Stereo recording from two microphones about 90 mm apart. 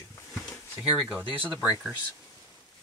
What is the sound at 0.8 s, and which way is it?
Speech, 5° right (ahead or behind).